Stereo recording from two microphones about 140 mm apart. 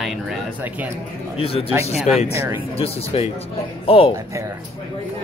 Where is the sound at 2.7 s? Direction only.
45° left (ahead or behind).